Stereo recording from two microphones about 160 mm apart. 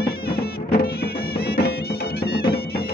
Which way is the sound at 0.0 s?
75° left (ahead or behind).